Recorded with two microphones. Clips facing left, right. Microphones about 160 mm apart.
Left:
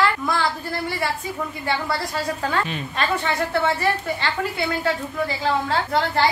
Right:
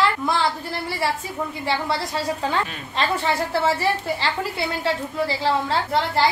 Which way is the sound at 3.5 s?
30° right (ahead or behind).